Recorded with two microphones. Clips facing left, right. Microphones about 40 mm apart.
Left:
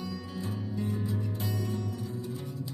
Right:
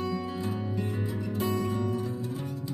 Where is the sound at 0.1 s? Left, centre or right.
Right.